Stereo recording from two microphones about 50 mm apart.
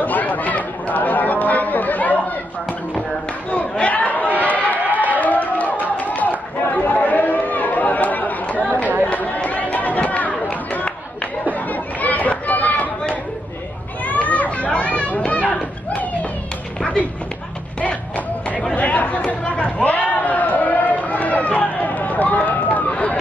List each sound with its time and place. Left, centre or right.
0.0 s chatter: left
3.5 s a sound: left
4.7 s crowd: right
5.0 s music: left
6.7 s chatter: left
9.4 s run: left
11.7 s chatter: left
14.0 s chatter: left
18.8 s chatter: left